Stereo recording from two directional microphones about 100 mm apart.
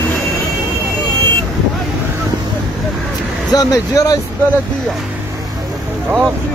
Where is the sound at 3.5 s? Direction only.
35° left (ahead or behind).